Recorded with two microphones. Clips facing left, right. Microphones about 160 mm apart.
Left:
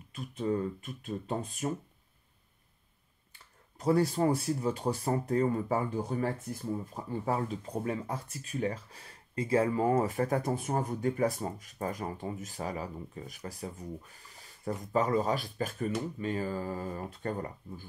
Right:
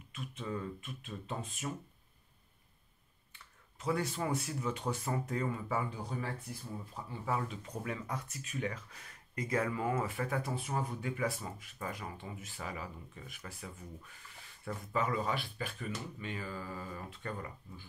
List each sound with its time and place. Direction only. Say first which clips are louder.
0.1 s speech: left 8 dB; 35° left (ahead or behind)
3.3 s speech: left 5 dB; 35° left (ahead or behind)